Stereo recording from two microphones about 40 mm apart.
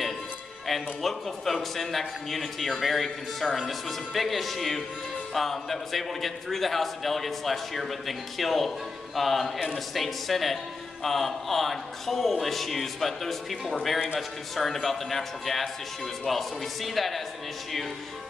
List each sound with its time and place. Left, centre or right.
0.7 s a man's voice: centre